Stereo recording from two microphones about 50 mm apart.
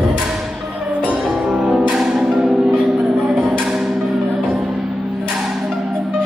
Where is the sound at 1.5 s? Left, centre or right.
Centre.